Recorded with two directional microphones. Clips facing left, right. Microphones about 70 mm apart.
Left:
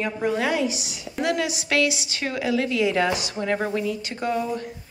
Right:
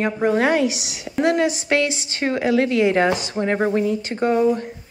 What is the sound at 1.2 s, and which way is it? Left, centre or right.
A woman's voice, right.